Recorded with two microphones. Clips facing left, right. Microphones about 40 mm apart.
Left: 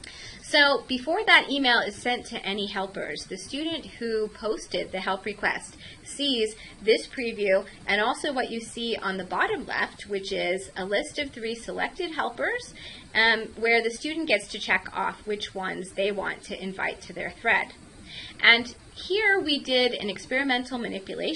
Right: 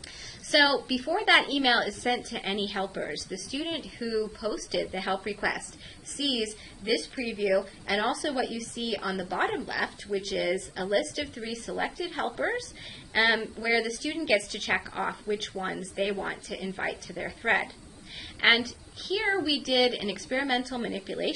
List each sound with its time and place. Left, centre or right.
0.5 s a woman's voice: centre
6.1 s a woman's voice: left; by 21.3 s centre